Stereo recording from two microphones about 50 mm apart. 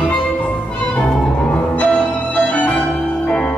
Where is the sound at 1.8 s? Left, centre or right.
Left.